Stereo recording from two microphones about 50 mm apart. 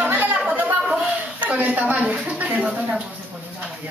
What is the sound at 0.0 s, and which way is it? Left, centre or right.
Chatter, right.